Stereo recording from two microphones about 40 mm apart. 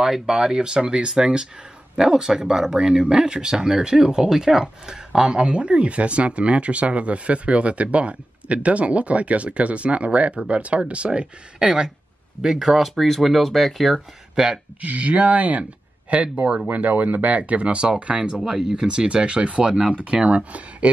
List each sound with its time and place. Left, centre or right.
0.0 s speech: centre
14.3 s speech: centre
14.8 s speech: right